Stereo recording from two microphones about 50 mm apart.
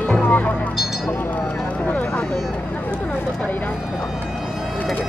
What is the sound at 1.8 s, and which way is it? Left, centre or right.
Speech, left.